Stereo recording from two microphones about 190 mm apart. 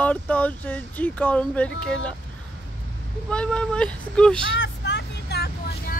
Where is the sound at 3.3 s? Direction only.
5° left (ahead or behind).